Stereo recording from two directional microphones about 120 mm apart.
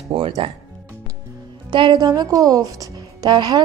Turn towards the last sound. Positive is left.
turn(degrees=-35)  # may be behind; listen again after turning